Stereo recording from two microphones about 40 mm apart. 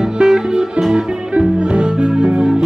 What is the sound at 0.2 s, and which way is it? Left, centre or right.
Music, centre.